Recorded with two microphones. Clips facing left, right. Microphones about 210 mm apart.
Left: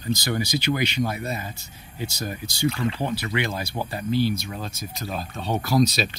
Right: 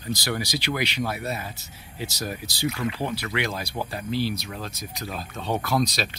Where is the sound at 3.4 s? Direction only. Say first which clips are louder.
Left 1 dB; centre (ahead or behind).